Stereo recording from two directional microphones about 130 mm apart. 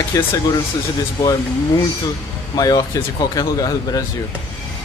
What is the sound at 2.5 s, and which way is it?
Speech, 30° left (ahead or behind).